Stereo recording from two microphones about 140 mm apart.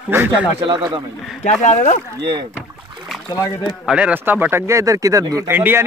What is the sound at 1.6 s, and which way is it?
Speech, 60° left (ahead or behind).